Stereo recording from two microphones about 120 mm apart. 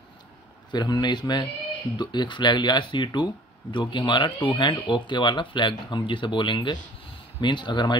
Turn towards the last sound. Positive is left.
turn(degrees=40)  # may be behind; listen again after turning